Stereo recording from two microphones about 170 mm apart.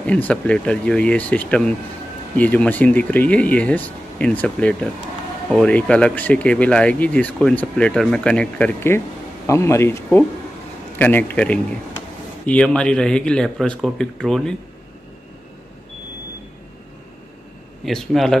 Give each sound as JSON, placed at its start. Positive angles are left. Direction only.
{"t": 0.0, "sound": "speech", "side_deg": 10}
{"t": 17.8, "sound": "speech", "side_deg": 0}